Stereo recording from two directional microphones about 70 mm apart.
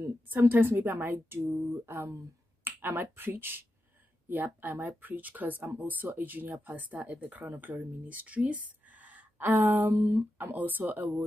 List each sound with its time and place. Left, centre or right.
0.0 s a woman's voice: right
9.9 s speech: right
10.3 s speech: right